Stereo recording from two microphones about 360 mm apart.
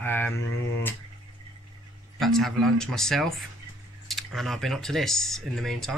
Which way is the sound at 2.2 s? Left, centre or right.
Centre.